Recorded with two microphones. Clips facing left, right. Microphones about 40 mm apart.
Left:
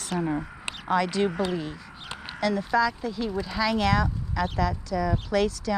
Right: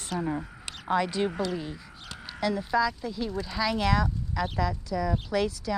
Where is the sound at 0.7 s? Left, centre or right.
Left.